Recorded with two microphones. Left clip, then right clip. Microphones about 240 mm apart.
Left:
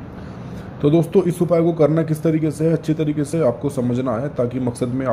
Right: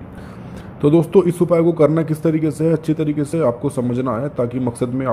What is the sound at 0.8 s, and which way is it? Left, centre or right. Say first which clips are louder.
A man's voice: right 3 dB; centre.